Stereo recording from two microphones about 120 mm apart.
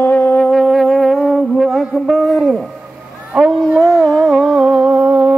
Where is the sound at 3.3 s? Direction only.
5° right (ahead or behind).